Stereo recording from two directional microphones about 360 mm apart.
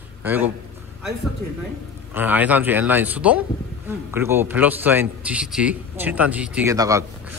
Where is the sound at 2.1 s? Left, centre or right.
Centre.